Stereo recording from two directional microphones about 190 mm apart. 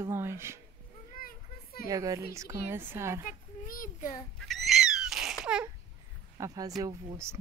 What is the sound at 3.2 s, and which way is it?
Child singing, 45° left (ahead or behind).